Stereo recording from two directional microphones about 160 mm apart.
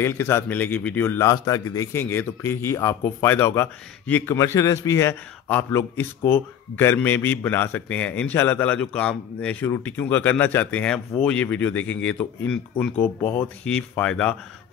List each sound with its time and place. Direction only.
0.0 s a man's voice: 15° left (ahead or behind)